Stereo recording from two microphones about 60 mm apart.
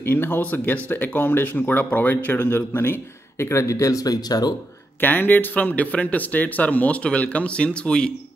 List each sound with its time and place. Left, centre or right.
0.0 s speech: left
5.0 s speech: left